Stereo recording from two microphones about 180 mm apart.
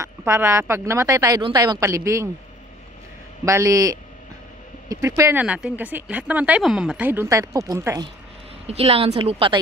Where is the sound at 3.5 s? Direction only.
15° right (ahead or behind).